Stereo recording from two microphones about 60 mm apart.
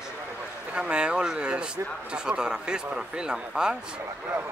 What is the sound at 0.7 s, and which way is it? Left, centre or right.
Speech, centre.